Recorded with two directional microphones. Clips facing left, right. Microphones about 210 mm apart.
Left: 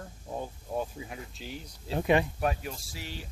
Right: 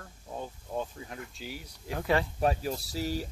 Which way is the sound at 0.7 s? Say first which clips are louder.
Left 1 dB; 10° left (ahead or behind).